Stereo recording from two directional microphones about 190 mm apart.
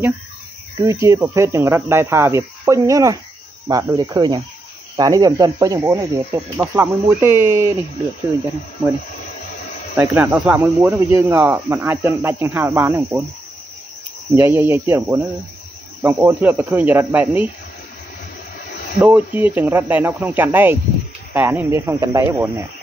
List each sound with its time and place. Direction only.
0.7 s speech: 15° right (ahead or behind)
9.9 s speech: 10° right (ahead or behind)
14.3 s speech: 10° right (ahead or behind)
18.9 s speech: 10° right (ahead or behind)